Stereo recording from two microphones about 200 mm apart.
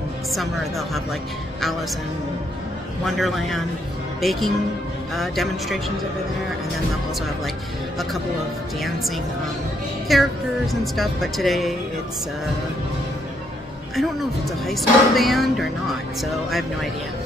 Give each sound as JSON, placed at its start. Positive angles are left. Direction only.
{"t": 0.3, "sound": "speech", "side_deg": 0}
{"t": 3.2, "sound": "speech", "side_deg": 0}
{"t": 10.1, "sound": "speech", "side_deg": 0}
{"t": 14.7, "sound": "speech", "side_deg": 0}